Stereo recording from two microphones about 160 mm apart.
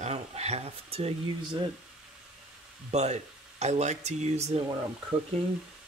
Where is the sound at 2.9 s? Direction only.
45° right (ahead or behind).